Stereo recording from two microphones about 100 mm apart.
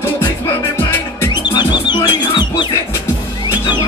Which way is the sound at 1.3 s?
45° left (ahead or behind).